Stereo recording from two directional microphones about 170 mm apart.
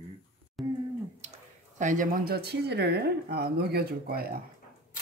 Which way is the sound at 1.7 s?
50° right (ahead or behind).